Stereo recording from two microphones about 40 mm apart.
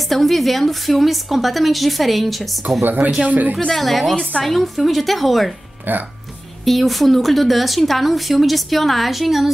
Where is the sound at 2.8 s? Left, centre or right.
Right.